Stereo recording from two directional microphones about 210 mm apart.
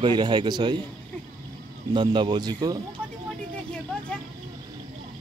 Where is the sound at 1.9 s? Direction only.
20° right (ahead or behind).